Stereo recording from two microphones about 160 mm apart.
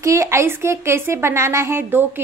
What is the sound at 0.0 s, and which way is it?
A woman's voice, 20° right (ahead or behind).